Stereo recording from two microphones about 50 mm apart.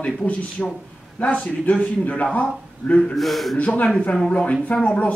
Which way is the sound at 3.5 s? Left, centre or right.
Left.